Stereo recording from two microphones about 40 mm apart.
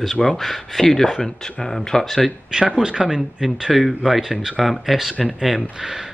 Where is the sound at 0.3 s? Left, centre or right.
Centre.